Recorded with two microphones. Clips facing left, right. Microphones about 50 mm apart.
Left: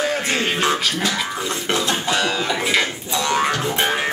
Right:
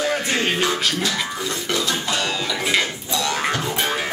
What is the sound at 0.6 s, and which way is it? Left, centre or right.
Music, left.